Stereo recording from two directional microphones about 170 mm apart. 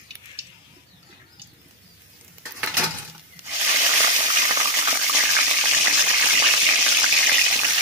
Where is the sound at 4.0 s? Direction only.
25° right (ahead or behind).